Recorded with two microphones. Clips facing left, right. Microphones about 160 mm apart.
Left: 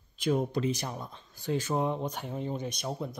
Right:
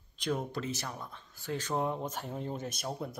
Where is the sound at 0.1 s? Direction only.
10° left (ahead or behind).